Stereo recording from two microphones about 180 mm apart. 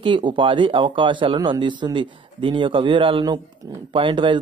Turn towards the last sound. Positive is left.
turn(degrees=-25)  # may be behind; listen again after turning